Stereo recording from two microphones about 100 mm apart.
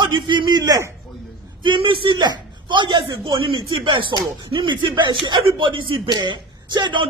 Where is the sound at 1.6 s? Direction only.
60° right (ahead or behind).